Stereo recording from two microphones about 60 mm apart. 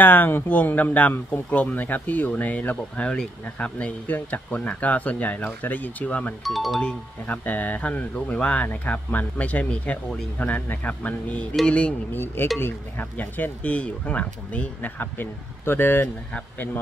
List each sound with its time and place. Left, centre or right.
0.0 s speech: left
6.4 s speech: centre
7.2 s speech: left
12.1 s speech: left
13.2 s speech: left
15.0 s speech: left